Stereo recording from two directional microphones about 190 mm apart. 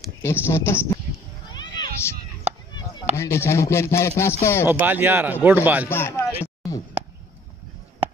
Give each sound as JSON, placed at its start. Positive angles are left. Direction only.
{"t": 0.2, "sound": "chopping", "side_deg": 15}
{"t": 1.5, "sound": "cat", "side_deg": 25}
{"t": 3.2, "sound": "chopping", "side_deg": 15}
{"t": 4.6, "sound": "speech", "side_deg": -10}
{"t": 5.9, "sound": "chopping", "side_deg": 10}
{"t": 6.4, "sound": "a sound", "side_deg": 15}